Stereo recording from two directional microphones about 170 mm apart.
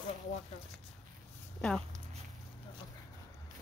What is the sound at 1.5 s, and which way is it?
Speech, 5° left (ahead or behind).